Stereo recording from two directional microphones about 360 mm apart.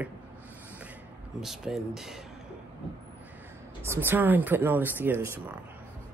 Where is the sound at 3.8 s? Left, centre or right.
Centre.